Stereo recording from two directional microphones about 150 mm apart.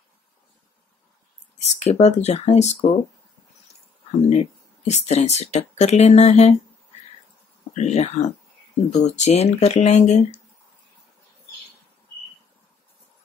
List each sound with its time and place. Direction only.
1.6 s speech: 45° left (ahead or behind)
4.3 s speech: 50° left (ahead or behind)
7.7 s speech: 50° left (ahead or behind)